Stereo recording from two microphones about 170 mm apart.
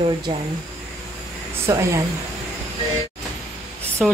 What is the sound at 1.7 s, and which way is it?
Speech, 15° right (ahead or behind).